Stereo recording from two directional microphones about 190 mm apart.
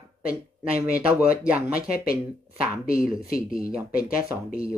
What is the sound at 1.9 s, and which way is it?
Speech, 50° left (ahead or behind).